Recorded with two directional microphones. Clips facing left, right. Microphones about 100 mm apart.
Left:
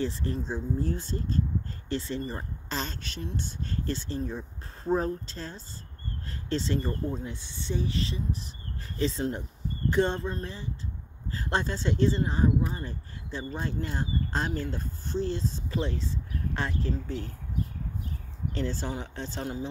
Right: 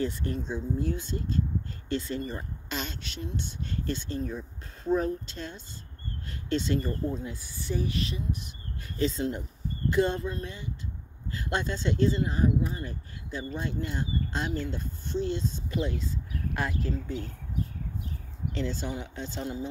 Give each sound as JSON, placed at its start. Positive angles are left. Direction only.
{"t": 0.0, "sound": "speech", "side_deg": 30}
{"t": 1.9, "sound": "speech", "side_deg": 30}
{"t": 18.5, "sound": "speech", "side_deg": 40}